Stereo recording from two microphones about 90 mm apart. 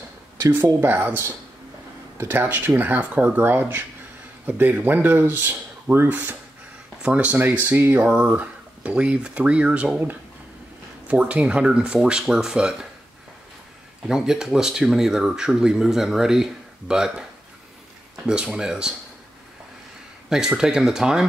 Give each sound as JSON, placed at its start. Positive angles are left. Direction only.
{"t": 0.7, "sound": "speech", "side_deg": -25}
{"t": 14.0, "sound": "speech", "side_deg": -5}
{"t": 20.2, "sound": "speech", "side_deg": -5}